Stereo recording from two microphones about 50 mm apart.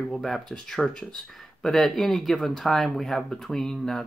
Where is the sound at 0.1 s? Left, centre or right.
Centre.